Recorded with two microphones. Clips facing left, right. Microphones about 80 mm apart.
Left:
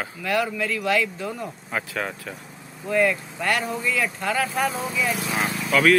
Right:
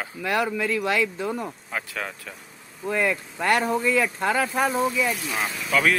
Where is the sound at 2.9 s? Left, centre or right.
Centre.